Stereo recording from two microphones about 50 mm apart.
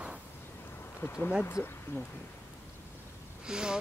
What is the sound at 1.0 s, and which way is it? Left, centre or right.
Speech, left.